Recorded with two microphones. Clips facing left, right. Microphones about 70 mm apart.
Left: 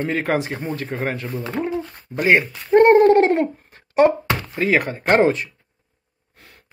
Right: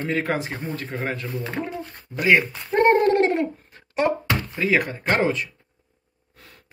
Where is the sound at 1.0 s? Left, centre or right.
Left.